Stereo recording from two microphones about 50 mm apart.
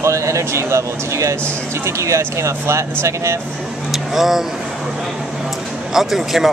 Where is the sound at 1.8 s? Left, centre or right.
Right.